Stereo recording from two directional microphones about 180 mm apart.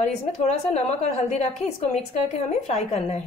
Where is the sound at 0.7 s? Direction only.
40° left (ahead or behind).